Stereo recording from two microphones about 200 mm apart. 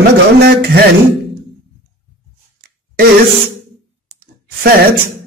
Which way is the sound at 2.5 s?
50° right (ahead or behind).